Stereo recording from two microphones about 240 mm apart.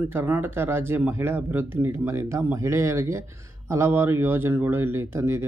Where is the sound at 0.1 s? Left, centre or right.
Centre.